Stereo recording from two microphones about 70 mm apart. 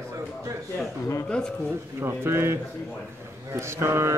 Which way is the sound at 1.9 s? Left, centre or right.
Right.